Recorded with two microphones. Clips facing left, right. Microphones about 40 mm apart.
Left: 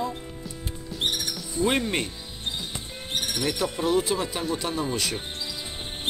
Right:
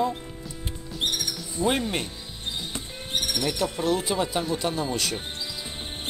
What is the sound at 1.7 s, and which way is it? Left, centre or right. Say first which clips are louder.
Speech: even; centre.